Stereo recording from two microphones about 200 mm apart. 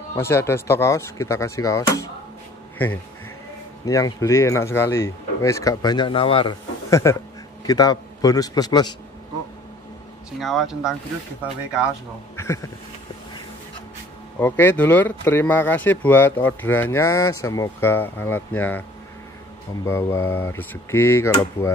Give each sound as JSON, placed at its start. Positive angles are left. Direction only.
{"t": 0.1, "sound": "speech", "side_deg": 15}
{"t": 3.8, "sound": "speech", "side_deg": 15}
{"t": 6.9, "sound": "a man's voice", "side_deg": 15}
{"t": 10.4, "sound": "speech", "side_deg": 0}
{"t": 12.4, "sound": "speech", "side_deg": 15}
{"t": 14.4, "sound": "speech", "side_deg": 10}